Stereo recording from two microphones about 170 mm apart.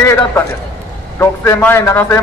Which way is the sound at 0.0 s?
15° left (ahead or behind).